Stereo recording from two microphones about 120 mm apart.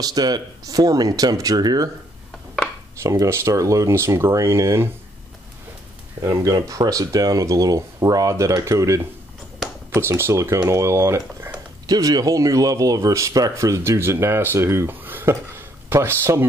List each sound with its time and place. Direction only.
0.0 s speech: 35° right (ahead or behind)
3.0 s speech: 25° right (ahead or behind)
6.2 s speech: 30° right (ahead or behind)
11.8 s speech: 30° right (ahead or behind)